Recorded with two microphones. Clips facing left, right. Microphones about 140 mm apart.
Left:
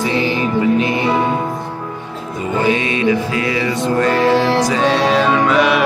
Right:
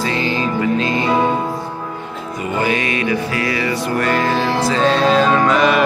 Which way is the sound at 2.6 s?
25° left (ahead or behind).